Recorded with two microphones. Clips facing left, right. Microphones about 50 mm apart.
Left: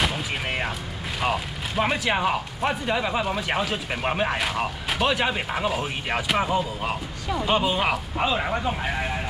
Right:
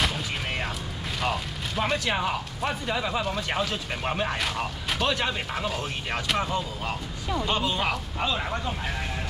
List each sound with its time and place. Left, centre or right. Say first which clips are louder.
0.0 s artillery fire: left 2 dB; centre
1.2 s speech: left 3 dB; centre